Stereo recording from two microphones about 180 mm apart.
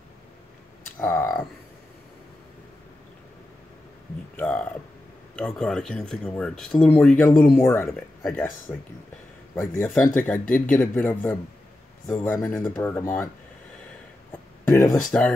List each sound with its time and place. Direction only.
1.0 s speech: 15° left (ahead or behind)
4.4 s speech: 5° left (ahead or behind)
12.5 s speech: 20° left (ahead or behind)
14.6 s speech: 15° left (ahead or behind)